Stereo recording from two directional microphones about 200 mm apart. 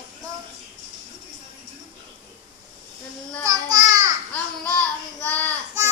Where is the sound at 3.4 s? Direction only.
15° right (ahead or behind).